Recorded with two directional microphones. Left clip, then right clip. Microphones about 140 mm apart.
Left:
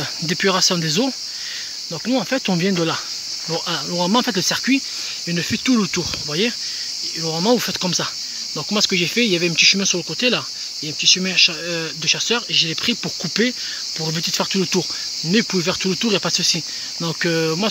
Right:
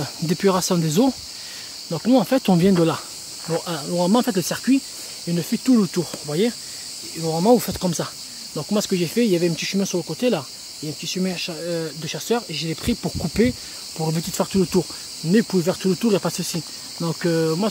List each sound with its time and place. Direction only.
0.3 s speech: 10° right (ahead or behind)
3.4 s speech: 5° left (ahead or behind)
7.4 s speech: 5° left (ahead or behind)